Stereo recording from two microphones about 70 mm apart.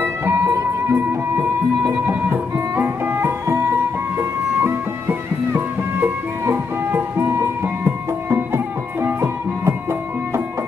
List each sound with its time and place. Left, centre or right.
0.0 s music: right
2.0 s music: right